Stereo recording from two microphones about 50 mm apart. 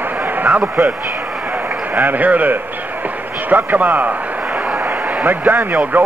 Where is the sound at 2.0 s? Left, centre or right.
Right.